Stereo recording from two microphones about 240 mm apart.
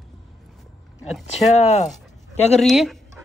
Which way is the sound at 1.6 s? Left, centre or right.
Left.